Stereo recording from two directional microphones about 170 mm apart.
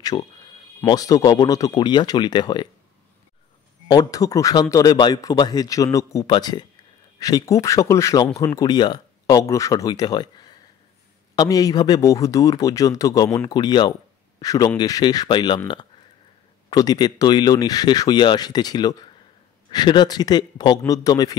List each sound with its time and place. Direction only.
0.0 s a man's voice: 25° left (ahead or behind)
3.8 s a man's voice: 25° left (ahead or behind)